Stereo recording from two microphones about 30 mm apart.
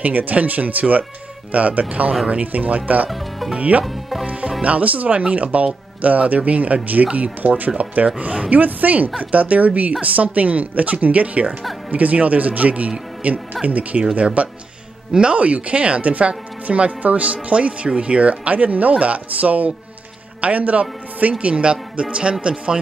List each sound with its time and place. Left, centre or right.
0.0 s speech: right
2.4 s speech: right
3.1 s speech: centre
3.8 s music: centre
4.6 s speech: right
7.8 s speech: right
8.5 s speech: right
9.2 s speech: right
14.1 s a man's voice: right